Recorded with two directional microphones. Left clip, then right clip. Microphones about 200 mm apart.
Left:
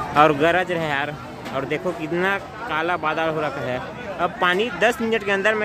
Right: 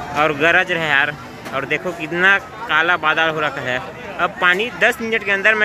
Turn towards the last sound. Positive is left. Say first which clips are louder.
# right 4 dB
turn(degrees=20)  # may be behind; listen again after turning